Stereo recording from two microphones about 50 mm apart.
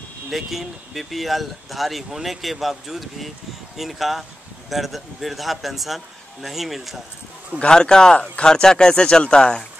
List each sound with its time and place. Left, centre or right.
0.3 s speech: centre
7.5 s speech: centre